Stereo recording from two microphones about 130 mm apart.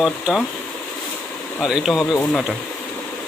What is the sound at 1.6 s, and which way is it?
Speech, 5° right (ahead or behind).